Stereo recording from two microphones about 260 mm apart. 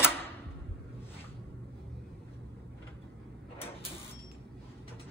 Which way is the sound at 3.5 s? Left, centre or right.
Left.